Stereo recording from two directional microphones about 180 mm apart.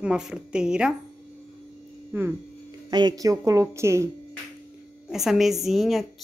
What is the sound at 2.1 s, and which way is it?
A woman's voice, 10° right (ahead or behind).